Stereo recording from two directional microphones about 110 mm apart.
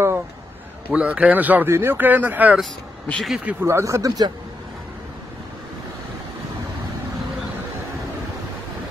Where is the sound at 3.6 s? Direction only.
25° right (ahead or behind).